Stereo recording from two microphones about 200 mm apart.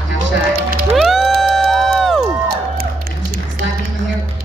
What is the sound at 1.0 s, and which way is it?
Music, centre (ahead or behind).